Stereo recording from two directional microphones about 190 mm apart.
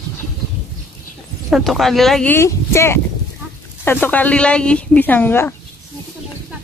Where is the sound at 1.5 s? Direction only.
Centre (ahead or behind).